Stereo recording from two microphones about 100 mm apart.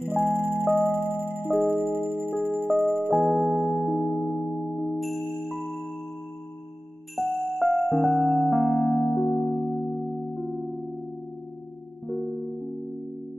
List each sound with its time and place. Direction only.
0.4 s music: 20° right (ahead or behind)
1.1 s music: 20° left (ahead or behind)
1.9 s music: 20° right (ahead or behind)
3.3 s music: centre (ahead or behind)
7.2 s music: centre (ahead or behind)
12.1 s music: centre (ahead or behind)